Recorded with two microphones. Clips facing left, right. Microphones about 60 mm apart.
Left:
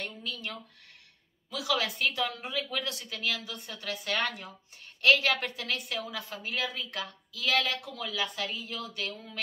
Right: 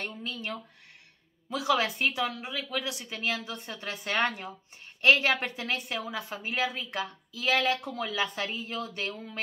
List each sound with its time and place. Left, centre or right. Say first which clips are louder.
0.0 s a sound: right 2 dB; right
1.5 s a woman's voice: right 4 dB; right
2.2 s speech: even; centre
2.9 s a woman's voice: right 2 dB; right